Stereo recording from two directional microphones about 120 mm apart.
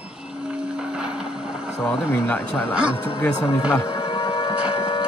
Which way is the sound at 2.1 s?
20° left (ahead or behind).